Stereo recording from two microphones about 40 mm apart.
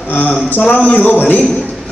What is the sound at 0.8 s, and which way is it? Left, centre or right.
Speech, left.